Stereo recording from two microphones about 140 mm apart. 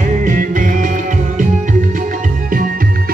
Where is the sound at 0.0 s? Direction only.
65° right (ahead or behind).